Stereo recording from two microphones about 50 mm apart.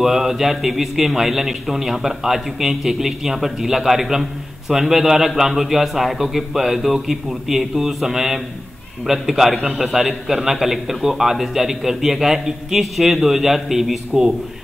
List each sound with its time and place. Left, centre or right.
0.0 s a man's voice: centre